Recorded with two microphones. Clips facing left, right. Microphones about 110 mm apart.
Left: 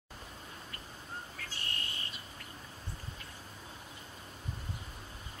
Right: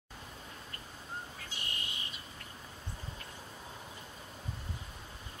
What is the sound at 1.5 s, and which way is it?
Bird, 15° right (ahead or behind).